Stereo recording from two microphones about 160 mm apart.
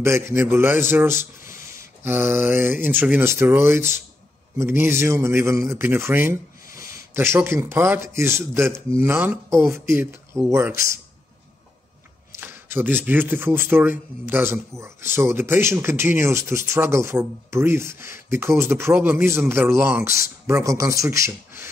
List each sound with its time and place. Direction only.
0.0 s a man's voice: 15° right (ahead or behind)
12.4 s a man's voice: 15° right (ahead or behind)